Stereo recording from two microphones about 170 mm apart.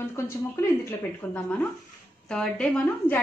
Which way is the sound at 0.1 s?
15° left (ahead or behind).